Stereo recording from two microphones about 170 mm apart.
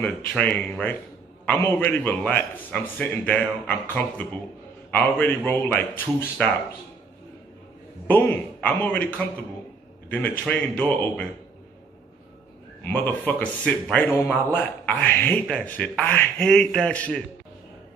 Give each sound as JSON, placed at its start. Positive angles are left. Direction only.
{"t": 0.0, "sound": "a man's voice", "side_deg": 5}
{"t": 8.1, "sound": "a man's voice", "side_deg": 10}
{"t": 12.8, "sound": "a man's voice", "side_deg": 10}